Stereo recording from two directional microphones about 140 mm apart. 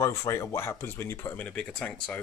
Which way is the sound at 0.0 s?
20° left (ahead or behind).